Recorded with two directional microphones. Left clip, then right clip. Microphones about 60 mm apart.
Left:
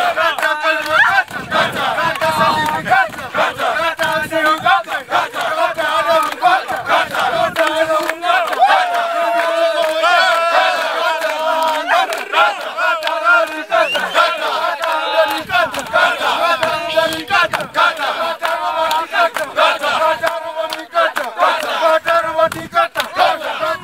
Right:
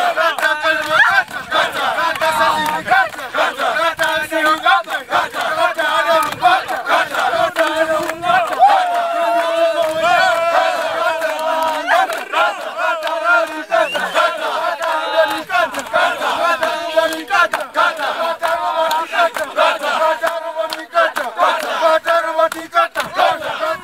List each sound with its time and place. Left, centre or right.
0.0 s a sound: centre
1.6 s crowd: centre
5.4 s battle cry: centre
7.6 s a sound: left
8.5 s a sound: left
12.3 s battle cry: centre
13.1 s chant: centre
13.9 s battle cry: left
16.9 s a sound: left
20.9 s battle cry: centre
21.8 s chant: centre
23.1 s battle cry: centre